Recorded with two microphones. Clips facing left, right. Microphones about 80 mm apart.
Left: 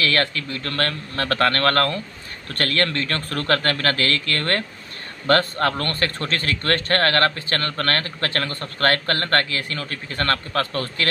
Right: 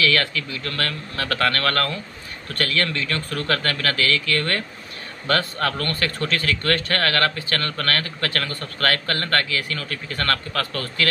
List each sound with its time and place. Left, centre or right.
0.0 s a man's voice: left